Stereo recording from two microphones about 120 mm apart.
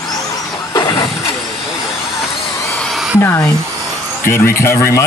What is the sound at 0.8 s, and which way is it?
Vehicle, 35° left (ahead or behind).